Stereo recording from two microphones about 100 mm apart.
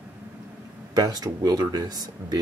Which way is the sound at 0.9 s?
40° right (ahead or behind).